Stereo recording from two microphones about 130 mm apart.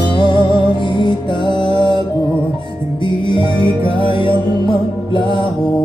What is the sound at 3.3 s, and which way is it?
Music, 40° left (ahead or behind).